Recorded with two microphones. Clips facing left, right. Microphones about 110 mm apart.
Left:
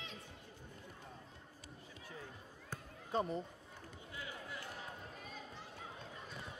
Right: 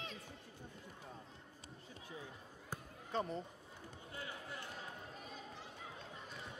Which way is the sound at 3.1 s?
10° left (ahead or behind).